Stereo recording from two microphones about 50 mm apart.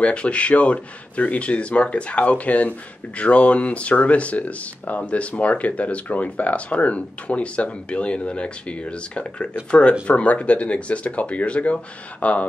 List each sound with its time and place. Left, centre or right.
0.0 s speech: left